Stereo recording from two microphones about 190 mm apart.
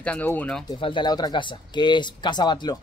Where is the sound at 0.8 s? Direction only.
25° left (ahead or behind).